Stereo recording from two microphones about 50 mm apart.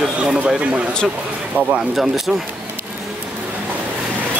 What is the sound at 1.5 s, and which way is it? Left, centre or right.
Speech, right.